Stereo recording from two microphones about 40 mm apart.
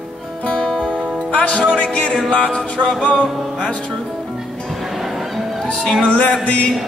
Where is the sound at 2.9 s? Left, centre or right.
Left.